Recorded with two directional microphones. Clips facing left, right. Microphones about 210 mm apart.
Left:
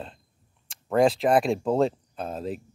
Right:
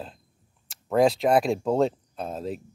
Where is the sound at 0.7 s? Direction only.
Centre (ahead or behind).